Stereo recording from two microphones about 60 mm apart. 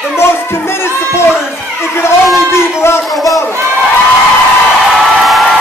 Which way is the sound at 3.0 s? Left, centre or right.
Centre.